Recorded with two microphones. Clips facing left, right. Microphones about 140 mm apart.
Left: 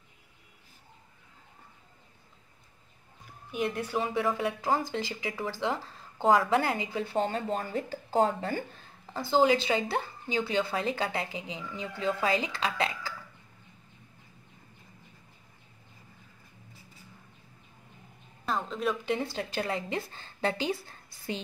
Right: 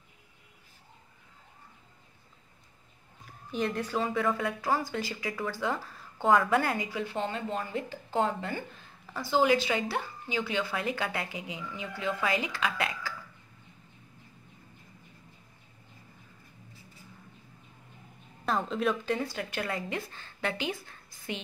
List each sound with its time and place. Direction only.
3.6 s a woman's voice: 15° left (ahead or behind); by 12.9 s 30° left (ahead or behind)
18.4 s a sound: centre (ahead or behind)
19.0 s a woman's voice: 25° left (ahead or behind)